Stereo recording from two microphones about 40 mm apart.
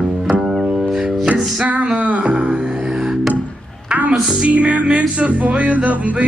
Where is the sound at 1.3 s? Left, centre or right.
Right.